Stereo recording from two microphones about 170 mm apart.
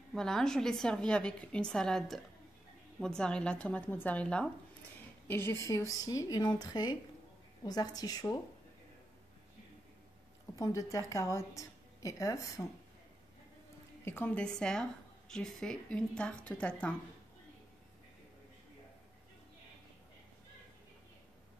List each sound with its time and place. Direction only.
0.1 s a woman's voice: 5° left (ahead or behind); by 8.4 s 20° left (ahead or behind)
10.5 s a woman's voice: 20° left (ahead or behind)
14.0 s a woman's voice: 10° left (ahead or behind)